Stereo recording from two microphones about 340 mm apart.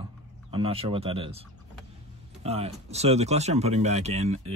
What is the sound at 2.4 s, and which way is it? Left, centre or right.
Speech, centre.